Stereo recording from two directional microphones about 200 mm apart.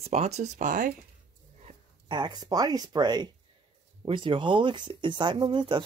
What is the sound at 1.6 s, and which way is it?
Speech, 20° right (ahead or behind).